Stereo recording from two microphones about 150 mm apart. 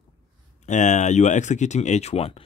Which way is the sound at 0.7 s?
55° left (ahead or behind).